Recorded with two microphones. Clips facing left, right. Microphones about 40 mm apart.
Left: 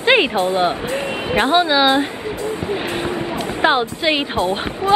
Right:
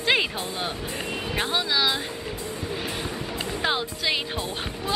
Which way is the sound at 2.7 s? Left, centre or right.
Left.